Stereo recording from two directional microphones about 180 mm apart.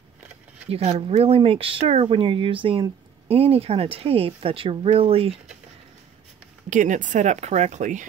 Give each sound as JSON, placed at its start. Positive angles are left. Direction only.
{"t": 0.7, "sound": "speech", "side_deg": -35}
{"t": 6.7, "sound": "speech", "side_deg": -45}